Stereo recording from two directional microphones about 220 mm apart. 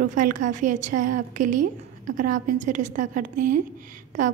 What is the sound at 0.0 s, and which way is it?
A woman's voice, 35° right (ahead or behind).